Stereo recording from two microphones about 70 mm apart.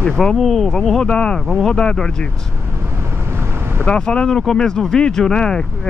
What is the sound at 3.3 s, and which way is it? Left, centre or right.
Boat, right.